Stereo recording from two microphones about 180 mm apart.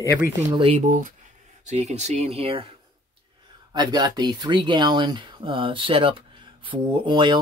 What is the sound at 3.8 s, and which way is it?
Speech, 25° right (ahead or behind).